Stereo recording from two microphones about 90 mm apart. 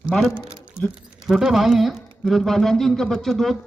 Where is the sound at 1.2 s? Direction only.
5° right (ahead or behind).